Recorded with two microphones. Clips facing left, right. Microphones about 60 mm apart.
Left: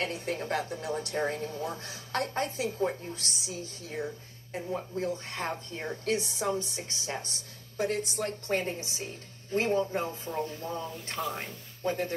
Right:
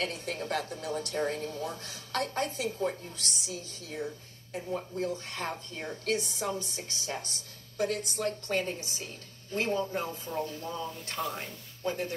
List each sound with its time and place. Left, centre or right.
0.0 s a woman's voice: left